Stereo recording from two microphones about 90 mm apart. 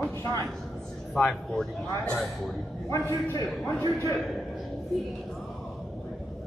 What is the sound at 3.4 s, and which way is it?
A man's voice, 5° left (ahead or behind).